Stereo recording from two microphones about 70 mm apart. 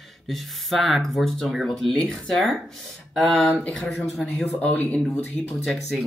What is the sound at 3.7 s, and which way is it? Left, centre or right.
Speech, centre.